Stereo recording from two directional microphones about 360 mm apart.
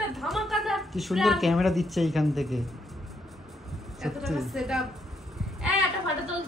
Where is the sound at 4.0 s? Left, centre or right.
Centre.